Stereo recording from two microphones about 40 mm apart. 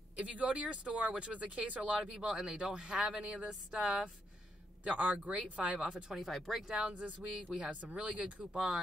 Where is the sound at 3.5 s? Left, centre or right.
Centre.